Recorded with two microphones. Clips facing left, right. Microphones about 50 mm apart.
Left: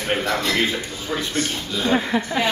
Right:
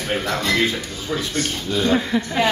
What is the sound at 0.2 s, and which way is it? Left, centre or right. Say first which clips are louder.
Speech: left 1 dB; centre.